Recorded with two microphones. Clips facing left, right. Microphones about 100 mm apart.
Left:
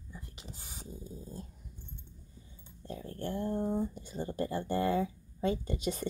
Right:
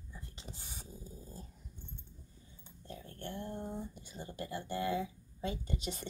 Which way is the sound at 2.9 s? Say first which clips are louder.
Left 7 dB; 35° left (ahead or behind).